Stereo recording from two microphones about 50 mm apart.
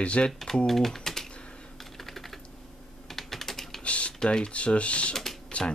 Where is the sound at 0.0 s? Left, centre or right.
Left.